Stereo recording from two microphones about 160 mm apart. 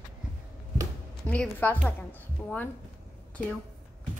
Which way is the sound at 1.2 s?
10° left (ahead or behind).